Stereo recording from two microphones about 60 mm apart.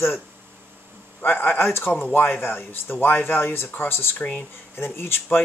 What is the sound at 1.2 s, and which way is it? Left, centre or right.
Speech, left.